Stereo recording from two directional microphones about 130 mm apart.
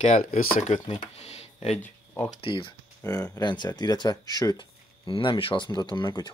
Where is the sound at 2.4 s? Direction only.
40° left (ahead or behind).